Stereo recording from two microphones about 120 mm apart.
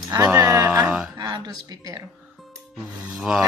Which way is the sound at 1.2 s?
35° right (ahead or behind).